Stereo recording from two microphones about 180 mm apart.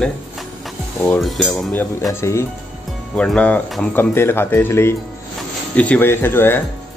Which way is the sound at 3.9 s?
15° left (ahead or behind).